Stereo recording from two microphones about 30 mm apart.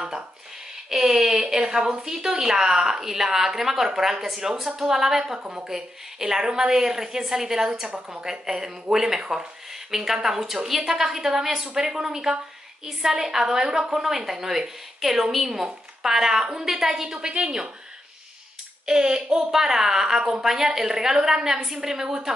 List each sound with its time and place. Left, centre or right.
0.8 s a woman's voice: centre
5.4 s speech: right
5.7 s a woman's voice: centre
17.2 s speech: right
18.9 s speech: right
19.5 s a woman's voice: centre